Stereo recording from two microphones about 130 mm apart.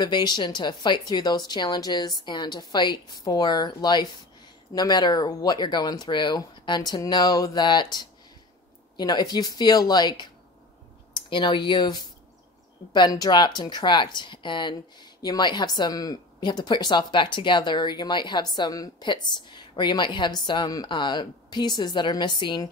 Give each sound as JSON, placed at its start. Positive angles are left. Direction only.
{"t": 0.0, "sound": "speech", "side_deg": 35}